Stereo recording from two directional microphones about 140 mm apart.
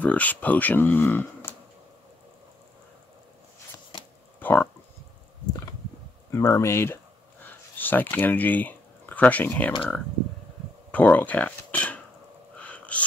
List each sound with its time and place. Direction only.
0.0 s speech: 10° left (ahead or behind)
4.4 s a sound: 15° left (ahead or behind)
6.3 s speech: 20° left (ahead or behind)
10.9 s speech: 10° left (ahead or behind)
12.5 s whispering: 10° left (ahead or behind)